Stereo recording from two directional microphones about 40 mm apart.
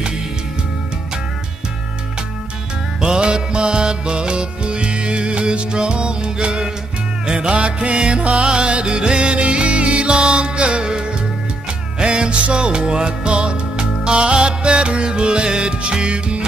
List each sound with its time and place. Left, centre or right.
3.0 s music: right
10.1 s music: centre